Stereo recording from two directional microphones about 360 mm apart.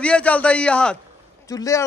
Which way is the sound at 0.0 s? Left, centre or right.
Centre.